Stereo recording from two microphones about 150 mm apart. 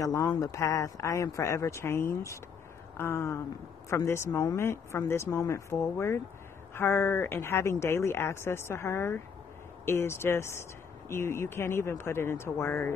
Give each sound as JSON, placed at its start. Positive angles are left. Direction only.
{"t": 0.0, "sound": "speech", "side_deg": 25}